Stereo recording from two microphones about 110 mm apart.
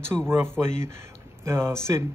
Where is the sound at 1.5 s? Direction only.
25° right (ahead or behind).